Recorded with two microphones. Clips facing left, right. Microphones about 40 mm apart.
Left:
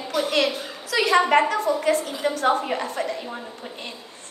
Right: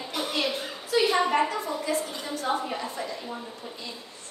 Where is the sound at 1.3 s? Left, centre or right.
Left.